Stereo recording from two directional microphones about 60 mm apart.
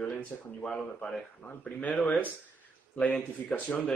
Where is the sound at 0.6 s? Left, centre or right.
Centre.